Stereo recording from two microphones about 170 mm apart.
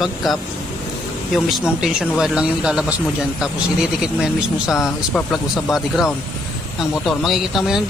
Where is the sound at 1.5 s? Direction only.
Centre (ahead or behind).